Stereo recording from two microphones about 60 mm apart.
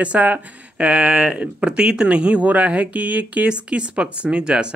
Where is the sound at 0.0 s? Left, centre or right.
Right.